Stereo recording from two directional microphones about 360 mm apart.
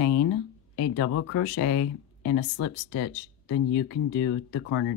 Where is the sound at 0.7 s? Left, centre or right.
Left.